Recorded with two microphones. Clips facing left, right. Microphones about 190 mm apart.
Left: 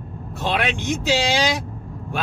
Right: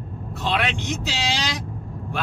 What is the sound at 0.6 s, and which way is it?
Vehicle, 50° left (ahead or behind).